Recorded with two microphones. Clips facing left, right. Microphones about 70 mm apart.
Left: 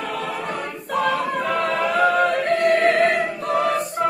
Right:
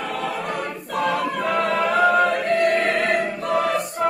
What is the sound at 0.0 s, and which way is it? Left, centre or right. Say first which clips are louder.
Choir: right 1 dB; right.